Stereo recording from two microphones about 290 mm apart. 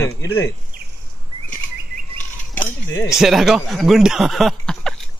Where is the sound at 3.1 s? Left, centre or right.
Centre.